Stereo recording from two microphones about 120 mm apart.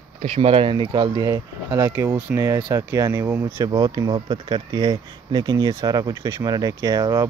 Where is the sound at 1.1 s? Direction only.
30° right (ahead or behind).